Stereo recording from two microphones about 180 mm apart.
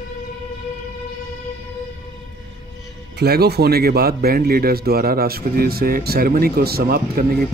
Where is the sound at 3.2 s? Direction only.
60° right (ahead or behind).